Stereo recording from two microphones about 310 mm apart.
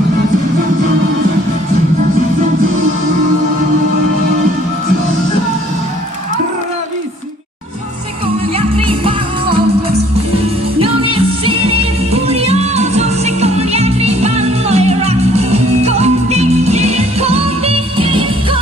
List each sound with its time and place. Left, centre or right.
8.5 s music: centre
10.8 s music: centre